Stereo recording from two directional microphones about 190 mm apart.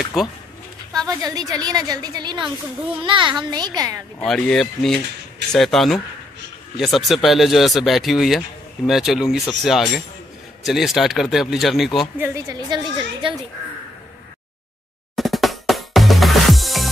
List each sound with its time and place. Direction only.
0.9 s a woman's voice: 20° right (ahead or behind)
4.2 s speech: 5° left (ahead or behind)
12.2 s a woman's voice: 15° right (ahead or behind)
15.1 s music: centre (ahead or behind)